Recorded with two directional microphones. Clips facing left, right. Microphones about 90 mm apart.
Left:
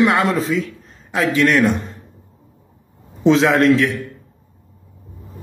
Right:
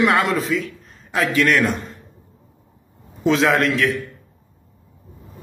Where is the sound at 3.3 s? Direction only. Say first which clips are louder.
Left 3 dB; 25° left (ahead or behind).